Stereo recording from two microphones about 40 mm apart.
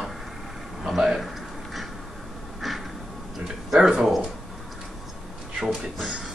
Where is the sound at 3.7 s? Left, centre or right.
Centre.